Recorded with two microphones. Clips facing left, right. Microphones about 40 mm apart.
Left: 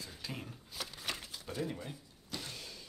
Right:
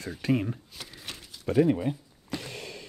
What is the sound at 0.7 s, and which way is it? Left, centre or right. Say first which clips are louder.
Speech: even; centre.